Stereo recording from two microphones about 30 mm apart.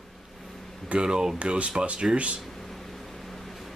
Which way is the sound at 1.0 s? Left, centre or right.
Right.